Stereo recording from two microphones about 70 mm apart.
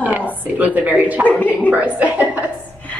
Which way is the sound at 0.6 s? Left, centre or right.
Right.